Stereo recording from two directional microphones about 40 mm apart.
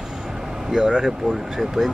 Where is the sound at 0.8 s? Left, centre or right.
Right.